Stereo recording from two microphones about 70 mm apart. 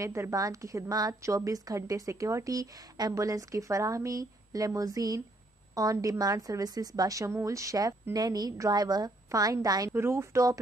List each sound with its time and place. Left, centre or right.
0.0 s a woman's voice: right
1.2 s a woman's voice: right
8.1 s a woman's voice: right
9.8 s speech: right